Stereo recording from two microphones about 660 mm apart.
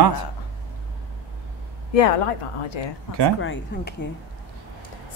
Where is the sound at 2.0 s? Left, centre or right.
Left.